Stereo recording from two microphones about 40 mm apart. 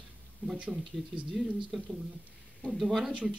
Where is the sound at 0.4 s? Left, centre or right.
Right.